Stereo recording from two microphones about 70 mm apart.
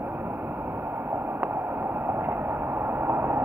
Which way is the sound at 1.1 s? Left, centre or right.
Right.